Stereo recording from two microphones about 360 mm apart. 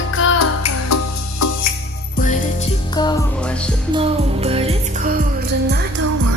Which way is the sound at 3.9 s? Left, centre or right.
Centre.